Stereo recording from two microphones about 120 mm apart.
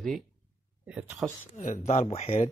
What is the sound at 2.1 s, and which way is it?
Speech, 60° left (ahead or behind).